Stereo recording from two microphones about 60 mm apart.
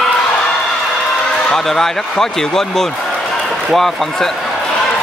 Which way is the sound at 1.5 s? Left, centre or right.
Centre.